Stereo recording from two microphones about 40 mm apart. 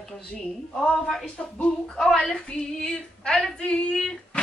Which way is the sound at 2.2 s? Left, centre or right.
Centre.